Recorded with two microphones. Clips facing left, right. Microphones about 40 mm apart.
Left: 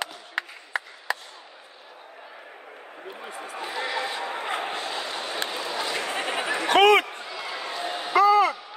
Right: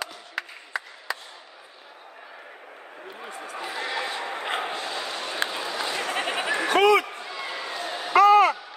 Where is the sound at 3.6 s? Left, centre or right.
Centre.